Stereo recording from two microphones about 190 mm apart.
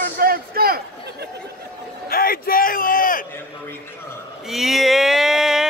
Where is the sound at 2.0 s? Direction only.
50° left (ahead or behind).